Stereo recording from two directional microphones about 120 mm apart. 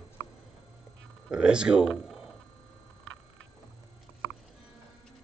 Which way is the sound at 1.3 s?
5° right (ahead or behind).